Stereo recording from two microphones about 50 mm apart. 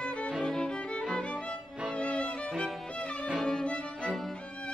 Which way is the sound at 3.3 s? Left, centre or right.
Centre.